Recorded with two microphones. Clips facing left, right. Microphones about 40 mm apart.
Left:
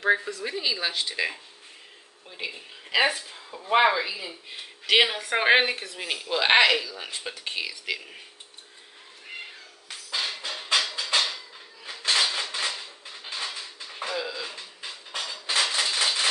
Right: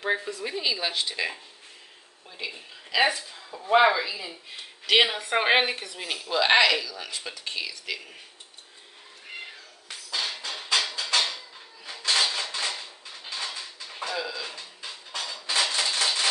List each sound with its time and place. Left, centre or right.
0.0 s speech: centre
6.9 s speech: left
7.3 s speech: centre
10.8 s a sound: centre